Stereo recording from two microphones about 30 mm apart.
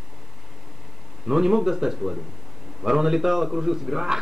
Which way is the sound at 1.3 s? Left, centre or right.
Centre.